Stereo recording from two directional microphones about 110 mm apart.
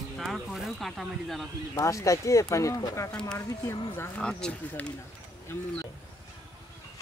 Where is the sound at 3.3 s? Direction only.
35° left (ahead or behind).